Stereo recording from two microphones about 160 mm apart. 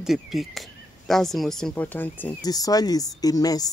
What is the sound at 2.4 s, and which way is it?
Speech, 25° left (ahead or behind).